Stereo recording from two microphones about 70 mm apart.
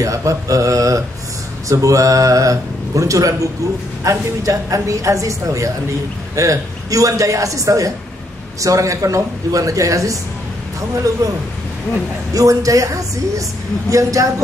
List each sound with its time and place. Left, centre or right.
0.0 s a man's voice: right
12.4 s speech: right